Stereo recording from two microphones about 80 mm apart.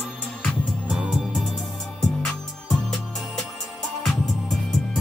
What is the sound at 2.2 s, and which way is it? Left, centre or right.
Music, centre.